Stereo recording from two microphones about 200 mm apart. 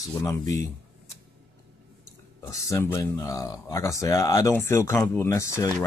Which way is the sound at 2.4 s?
15° left (ahead or behind).